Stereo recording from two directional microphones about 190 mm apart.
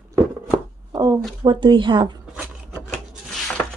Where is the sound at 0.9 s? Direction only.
20° right (ahead or behind).